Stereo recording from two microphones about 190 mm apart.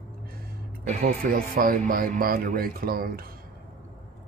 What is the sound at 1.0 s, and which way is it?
Speech, 45° right (ahead or behind).